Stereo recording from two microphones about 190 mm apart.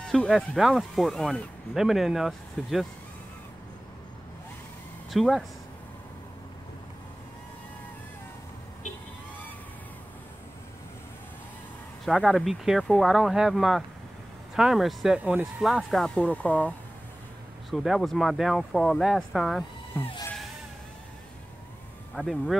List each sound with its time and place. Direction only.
0.0 s speech: centre (ahead or behind)
5.1 s speech: centre (ahead or behind)
12.0 s speech: centre (ahead or behind)
22.1 s speech: centre (ahead or behind)